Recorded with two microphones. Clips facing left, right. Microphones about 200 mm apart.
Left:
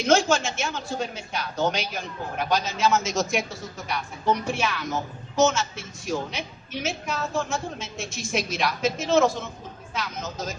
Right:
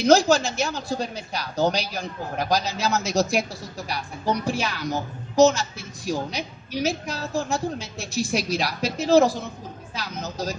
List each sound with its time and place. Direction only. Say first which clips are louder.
0.0 s speech: right 4 dB; 35° right (ahead or behind)